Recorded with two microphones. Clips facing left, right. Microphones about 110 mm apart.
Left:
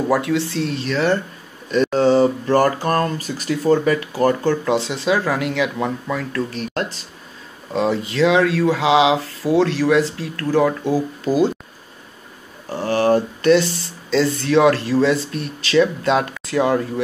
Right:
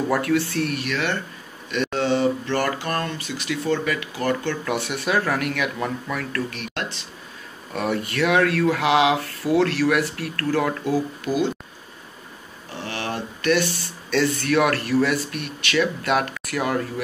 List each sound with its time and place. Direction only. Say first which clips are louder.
0.1 s speech: left 2 dB; 20° left (ahead or behind)
6.5 s speech: left 6 dB; 35° left (ahead or behind)
7.7 s speech: left 5 dB; 25° left (ahead or behind)
12.7 s a sound: left 12 dB; 40° left (ahead or behind)
14.1 s speech: left 4 dB; 25° left (ahead or behind)
15.3 s speech: left 6 dB; 30° left (ahead or behind)